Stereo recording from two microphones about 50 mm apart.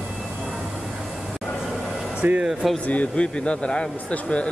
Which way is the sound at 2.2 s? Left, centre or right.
Right.